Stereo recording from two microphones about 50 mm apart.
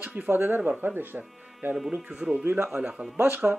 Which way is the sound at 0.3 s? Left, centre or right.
Right.